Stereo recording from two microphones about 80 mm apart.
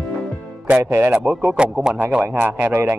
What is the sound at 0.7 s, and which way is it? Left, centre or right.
Speech, right.